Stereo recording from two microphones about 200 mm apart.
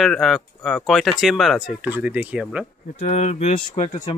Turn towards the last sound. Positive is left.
turn(degrees=35)  # may be behind; listen again after turning